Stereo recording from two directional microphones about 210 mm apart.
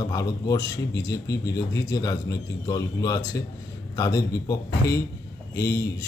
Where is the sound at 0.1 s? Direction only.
15° left (ahead or behind).